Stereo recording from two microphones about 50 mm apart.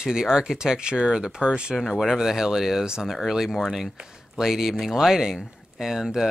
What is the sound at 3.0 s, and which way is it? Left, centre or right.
Speech, centre.